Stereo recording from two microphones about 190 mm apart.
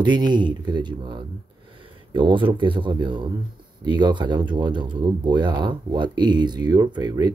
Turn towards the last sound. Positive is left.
turn(degrees=-20)  # may be behind; listen again after turning